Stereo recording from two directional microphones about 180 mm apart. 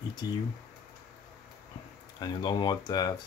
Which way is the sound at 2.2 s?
25° left (ahead or behind).